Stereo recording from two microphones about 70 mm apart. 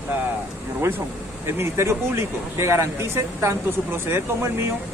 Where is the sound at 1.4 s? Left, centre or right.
Right.